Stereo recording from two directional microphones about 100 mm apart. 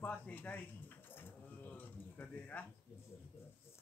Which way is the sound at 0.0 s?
15° left (ahead or behind).